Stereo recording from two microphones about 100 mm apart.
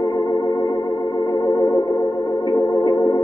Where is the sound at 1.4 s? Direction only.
40° left (ahead or behind).